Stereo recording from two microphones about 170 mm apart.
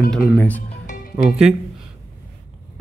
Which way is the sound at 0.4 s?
10° left (ahead or behind).